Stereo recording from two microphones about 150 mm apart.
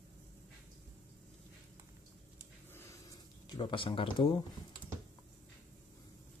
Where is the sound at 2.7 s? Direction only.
15° left (ahead or behind).